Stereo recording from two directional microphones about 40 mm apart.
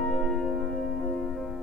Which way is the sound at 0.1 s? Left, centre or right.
Centre.